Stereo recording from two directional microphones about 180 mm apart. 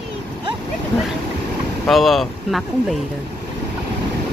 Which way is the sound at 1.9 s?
Centre (ahead or behind).